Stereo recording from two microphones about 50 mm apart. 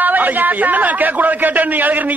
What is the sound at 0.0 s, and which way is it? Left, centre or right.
A woman's voice, right.